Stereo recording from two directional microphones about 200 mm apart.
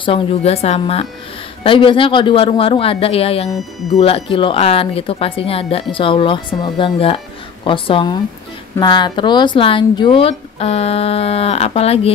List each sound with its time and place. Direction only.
0.0 s speech: 30° left (ahead or behind)
3.4 s speech: centre (ahead or behind)
4.0 s speech: 25° left (ahead or behind)